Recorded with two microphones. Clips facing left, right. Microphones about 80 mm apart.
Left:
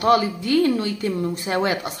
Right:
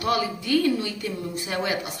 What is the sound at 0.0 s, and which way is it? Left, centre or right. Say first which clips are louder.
Speech: left 7 dB; left.